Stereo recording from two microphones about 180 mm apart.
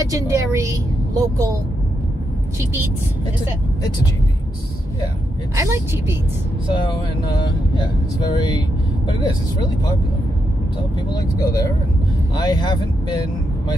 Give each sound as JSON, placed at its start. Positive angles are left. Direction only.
{"t": 0.0, "sound": "a woman's voice", "side_deg": -15}
{"t": 2.6, "sound": "a woman's voice", "side_deg": -15}
{"t": 5.6, "sound": "a woman's voice", "side_deg": -15}
{"t": 6.7, "sound": "speech", "side_deg": 25}
{"t": 11.0, "sound": "speech", "side_deg": 20}